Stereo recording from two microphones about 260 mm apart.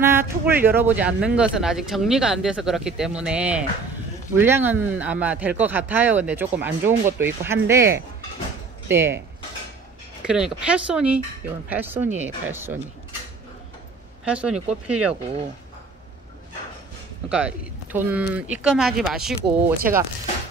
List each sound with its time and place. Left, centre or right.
0.0 s speech: centre
10.2 s speech: centre
14.2 s speech: centre
17.3 s speech: centre